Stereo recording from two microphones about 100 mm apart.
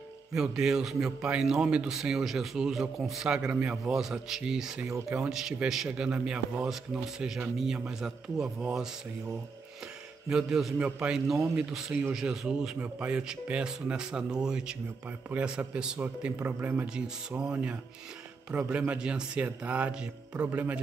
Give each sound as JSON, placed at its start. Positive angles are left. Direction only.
{"t": 0.3, "sound": "speech", "side_deg": -5}
{"t": 10.2, "sound": "speech", "side_deg": -5}